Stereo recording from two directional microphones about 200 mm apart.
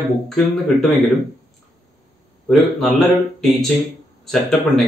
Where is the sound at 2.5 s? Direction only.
Centre (ahead or behind).